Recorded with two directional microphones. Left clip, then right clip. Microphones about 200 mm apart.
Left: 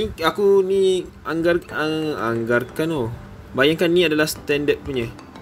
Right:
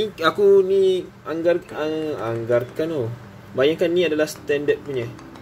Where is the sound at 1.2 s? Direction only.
35° left (ahead or behind).